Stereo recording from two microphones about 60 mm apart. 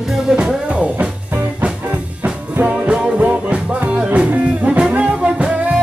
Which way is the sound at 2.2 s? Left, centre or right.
Right.